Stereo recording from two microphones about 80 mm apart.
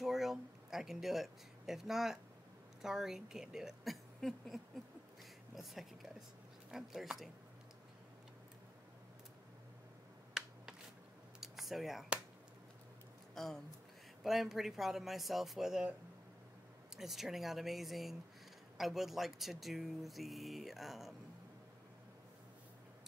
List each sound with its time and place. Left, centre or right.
0.0 s speech: centre
10.3 s a sound: centre
13.3 s speech: centre
16.9 s speech: centre